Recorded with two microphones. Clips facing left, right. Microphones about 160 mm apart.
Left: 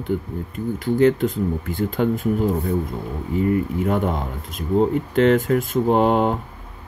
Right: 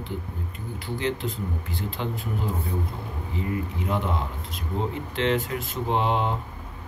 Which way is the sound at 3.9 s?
50° left (ahead or behind).